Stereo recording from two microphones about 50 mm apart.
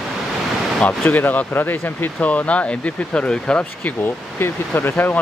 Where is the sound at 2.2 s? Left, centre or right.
Left.